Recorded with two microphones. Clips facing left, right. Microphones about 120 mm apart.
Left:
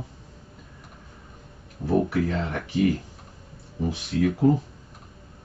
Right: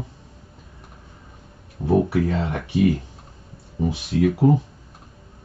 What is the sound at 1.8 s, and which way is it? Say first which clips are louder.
Speech: right 3 dB; 25° right (ahead or behind).